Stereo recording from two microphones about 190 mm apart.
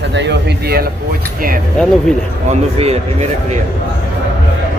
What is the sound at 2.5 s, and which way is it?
Speech, 35° right (ahead or behind).